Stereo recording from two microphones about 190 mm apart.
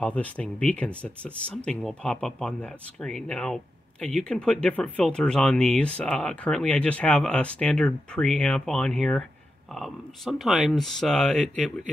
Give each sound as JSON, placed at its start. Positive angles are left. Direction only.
{"t": 0.0, "sound": "speech", "side_deg": 5}